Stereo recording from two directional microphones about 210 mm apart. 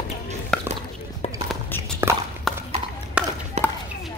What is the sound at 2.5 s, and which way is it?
Clip-clop, centre (ahead or behind).